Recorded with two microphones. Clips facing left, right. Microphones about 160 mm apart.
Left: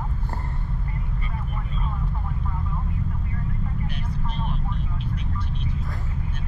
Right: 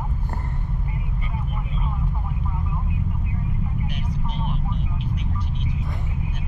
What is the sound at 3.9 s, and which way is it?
Vehicle, 15° right (ahead or behind).